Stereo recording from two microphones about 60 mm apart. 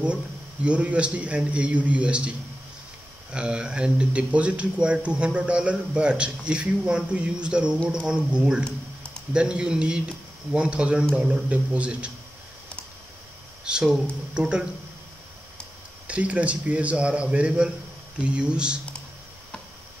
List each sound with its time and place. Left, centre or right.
0.7 s speech: centre
13.7 s speech: centre
16.1 s speech: right